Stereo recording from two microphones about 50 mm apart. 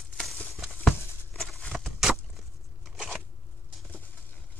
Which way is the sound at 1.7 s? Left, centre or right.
Centre.